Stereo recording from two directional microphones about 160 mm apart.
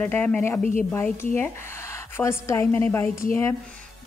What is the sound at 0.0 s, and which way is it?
A woman's voice, 10° left (ahead or behind).